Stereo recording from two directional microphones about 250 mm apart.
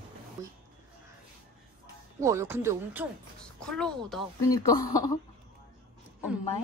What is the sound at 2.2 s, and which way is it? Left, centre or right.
Speech, centre.